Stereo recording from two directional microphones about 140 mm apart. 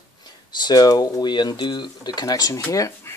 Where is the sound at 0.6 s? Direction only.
30° left (ahead or behind).